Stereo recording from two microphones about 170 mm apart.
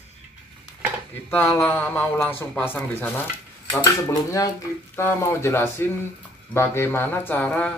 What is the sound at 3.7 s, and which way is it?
Speech, 20° left (ahead or behind).